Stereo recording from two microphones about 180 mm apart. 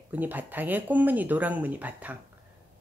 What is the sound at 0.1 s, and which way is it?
A woman's voice, 10° right (ahead or behind).